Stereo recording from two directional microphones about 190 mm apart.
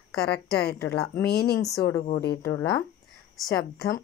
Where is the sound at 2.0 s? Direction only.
55° left (ahead or behind).